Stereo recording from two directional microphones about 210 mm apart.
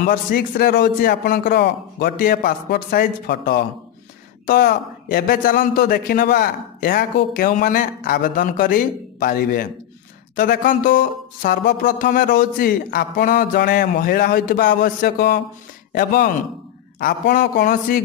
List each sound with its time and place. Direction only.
0.0 s a woman's voice: 45° left (ahead or behind)